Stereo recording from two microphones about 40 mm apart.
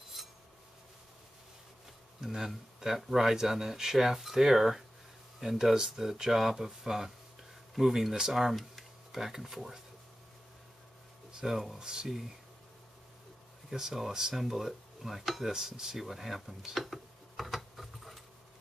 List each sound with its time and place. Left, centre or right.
0.2 s a sound: centre
2.2 s speech: centre
11.3 s speech: centre
11.8 s speech: centre
13.7 s speech: centre
15.0 s dishes: centre
15.5 s speech: centre
16.7 s a sound: centre